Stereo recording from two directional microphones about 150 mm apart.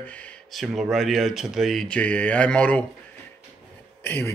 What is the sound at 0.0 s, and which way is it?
Speech, 10° left (ahead or behind).